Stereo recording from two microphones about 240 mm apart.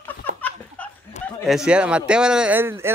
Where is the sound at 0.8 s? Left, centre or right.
Centre.